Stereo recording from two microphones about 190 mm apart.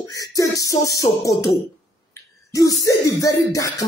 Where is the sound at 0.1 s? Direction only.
20° left (ahead or behind).